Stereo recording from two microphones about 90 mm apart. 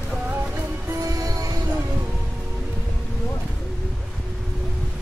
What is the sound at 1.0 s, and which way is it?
Music, 40° right (ahead or behind).